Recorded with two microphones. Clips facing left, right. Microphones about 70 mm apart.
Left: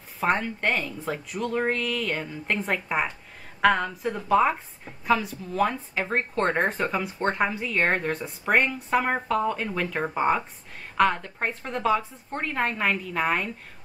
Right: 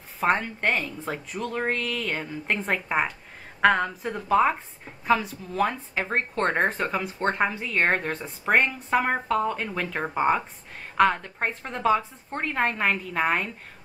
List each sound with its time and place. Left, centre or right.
0.2 s a woman's voice: centre